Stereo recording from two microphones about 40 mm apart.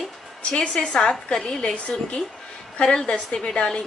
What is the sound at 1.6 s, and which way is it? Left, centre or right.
Speech, left.